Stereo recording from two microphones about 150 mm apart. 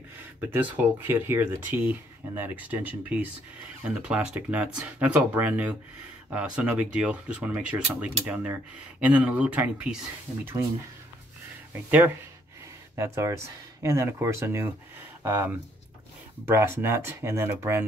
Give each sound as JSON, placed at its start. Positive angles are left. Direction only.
{"t": 0.4, "sound": "speech", "side_deg": -10}
{"t": 12.9, "sound": "speech", "side_deg": -20}